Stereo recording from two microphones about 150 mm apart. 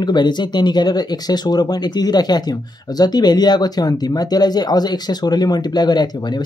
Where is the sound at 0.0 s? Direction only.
30° left (ahead or behind).